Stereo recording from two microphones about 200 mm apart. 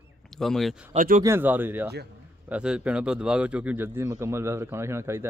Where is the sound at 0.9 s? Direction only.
40° right (ahead or behind).